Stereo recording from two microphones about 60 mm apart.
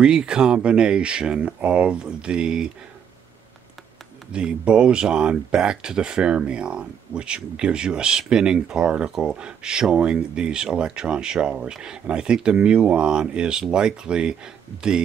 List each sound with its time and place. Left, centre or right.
0.0 s speech: centre
4.3 s speech: centre